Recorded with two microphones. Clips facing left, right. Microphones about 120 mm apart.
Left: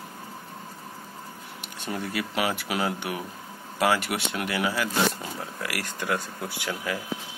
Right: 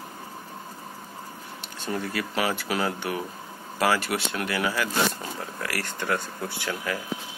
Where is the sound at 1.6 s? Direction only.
15° left (ahead or behind).